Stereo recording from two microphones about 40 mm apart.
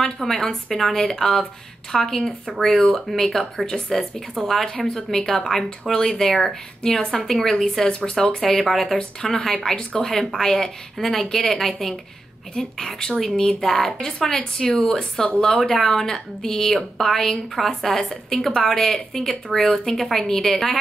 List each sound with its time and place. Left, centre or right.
0.2 s speech: centre
7.3 s speech: centre
8.4 s speech: centre
8.9 s speech: left
10.0 s speech: centre